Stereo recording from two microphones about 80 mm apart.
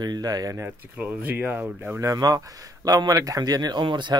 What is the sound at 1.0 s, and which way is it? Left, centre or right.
Speech, right.